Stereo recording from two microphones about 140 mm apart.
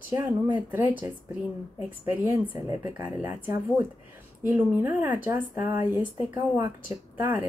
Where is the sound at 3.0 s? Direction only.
15° right (ahead or behind).